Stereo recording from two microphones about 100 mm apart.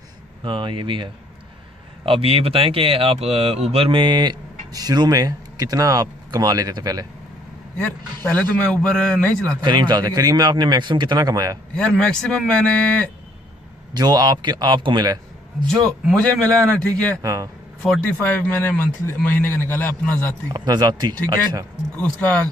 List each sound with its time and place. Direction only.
0.4 s speech: 55° right (ahead or behind); by 3.6 s 85° right
3.7 s speech: 65° right (ahead or behind); by 7.1 s 40° right (ahead or behind)
8.2 s a man's voice: 15° left (ahead or behind)
9.6 s speech: 50° right (ahead or behind)
11.7 s a man's voice: 10° left (ahead or behind)
13.9 s speech: 40° right (ahead or behind)
15.6 s a man's voice: 5° left (ahead or behind)
17.2 s speech: 35° right (ahead or behind)
18.0 s a man's voice: 15° left (ahead or behind)
20.5 s speech: 45° right (ahead or behind)
21.9 s a man's voice: 15° left (ahead or behind)